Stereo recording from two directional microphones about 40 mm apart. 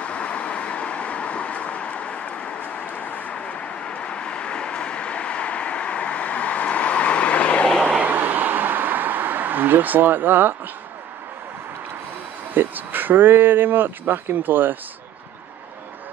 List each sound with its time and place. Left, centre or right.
0.0 s vehicle: left
3.3 s vehicle: left
8.0 s a sound: right
12.5 s speech: right